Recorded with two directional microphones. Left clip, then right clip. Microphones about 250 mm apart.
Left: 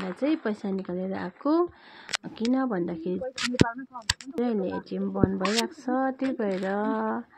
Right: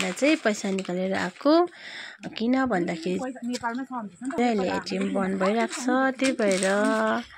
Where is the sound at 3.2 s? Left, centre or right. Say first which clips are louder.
Left 4 dB; right.